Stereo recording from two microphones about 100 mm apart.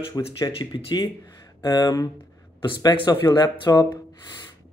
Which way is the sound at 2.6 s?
55° left (ahead or behind).